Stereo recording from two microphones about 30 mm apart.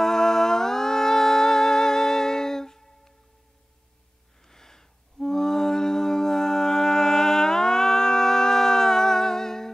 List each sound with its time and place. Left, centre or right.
0.0 s music: centre
4.5 s music: centre